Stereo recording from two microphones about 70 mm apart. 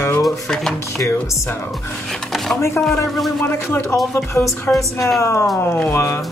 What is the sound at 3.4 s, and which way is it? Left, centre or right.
Speech, left.